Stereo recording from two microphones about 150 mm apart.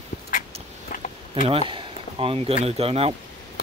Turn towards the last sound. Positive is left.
turn(degrees=-40)  # may be behind; listen again after turning